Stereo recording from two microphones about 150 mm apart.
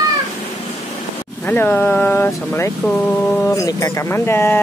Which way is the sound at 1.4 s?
10° left (ahead or behind).